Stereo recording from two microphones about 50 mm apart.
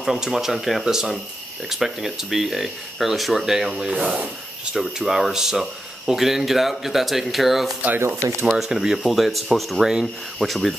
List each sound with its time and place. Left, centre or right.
0.0 s speech: centre
8.2 s speech: right
8.5 s speech: centre